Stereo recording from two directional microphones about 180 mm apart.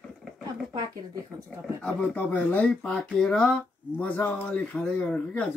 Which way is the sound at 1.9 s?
10° left (ahead or behind).